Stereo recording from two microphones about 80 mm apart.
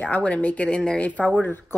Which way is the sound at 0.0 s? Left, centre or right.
Centre.